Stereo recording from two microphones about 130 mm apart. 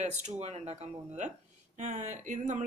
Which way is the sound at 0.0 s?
60° right (ahead or behind).